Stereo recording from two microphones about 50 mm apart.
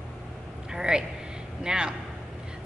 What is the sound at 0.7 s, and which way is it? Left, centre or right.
A woman's voice, centre.